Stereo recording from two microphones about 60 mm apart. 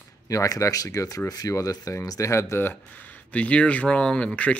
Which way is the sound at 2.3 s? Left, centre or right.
Left.